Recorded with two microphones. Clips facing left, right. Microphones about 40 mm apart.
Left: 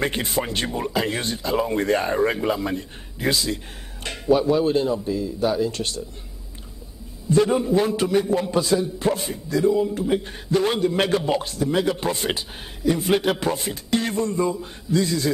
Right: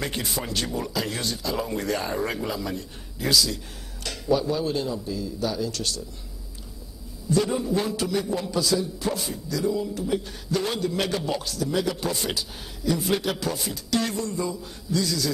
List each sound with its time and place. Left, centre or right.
0.0 s a man's voice: left
7.2 s a man's voice: left